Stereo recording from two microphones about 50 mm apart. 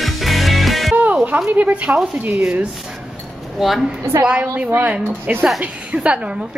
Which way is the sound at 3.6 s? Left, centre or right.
Centre.